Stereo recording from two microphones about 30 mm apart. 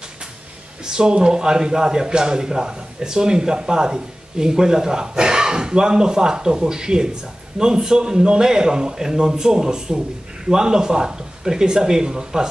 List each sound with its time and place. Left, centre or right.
0.8 s speech: right